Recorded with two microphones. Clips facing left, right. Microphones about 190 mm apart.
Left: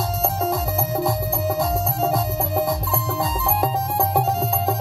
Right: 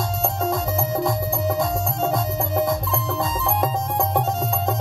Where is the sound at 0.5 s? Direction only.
Centre (ahead or behind).